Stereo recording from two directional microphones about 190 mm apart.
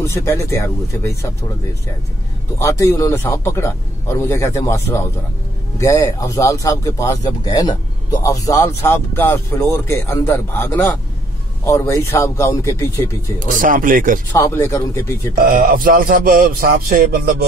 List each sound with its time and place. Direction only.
0.0 s speech: 15° left (ahead or behind)
2.6 s speech: 15° left (ahead or behind)
13.5 s speech: 45° right (ahead or behind)
14.3 s speech: 15° left (ahead or behind)
15.3 s speech: 45° right (ahead or behind)